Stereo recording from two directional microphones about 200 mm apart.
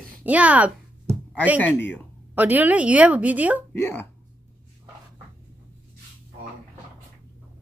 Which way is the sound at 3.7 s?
10° left (ahead or behind).